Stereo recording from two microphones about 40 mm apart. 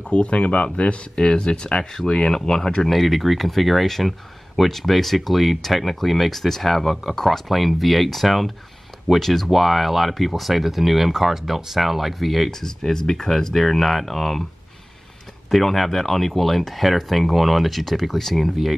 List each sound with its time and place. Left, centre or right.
0.0 s speech: left
2.9 s speech: centre
12.4 s speech: centre
15.5 s speech: centre